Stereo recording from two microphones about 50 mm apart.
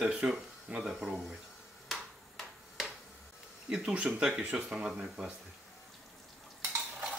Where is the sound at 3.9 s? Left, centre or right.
Centre.